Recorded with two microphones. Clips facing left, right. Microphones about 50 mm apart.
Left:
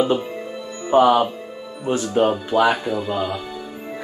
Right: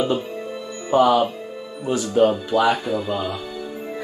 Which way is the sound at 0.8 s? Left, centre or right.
Left.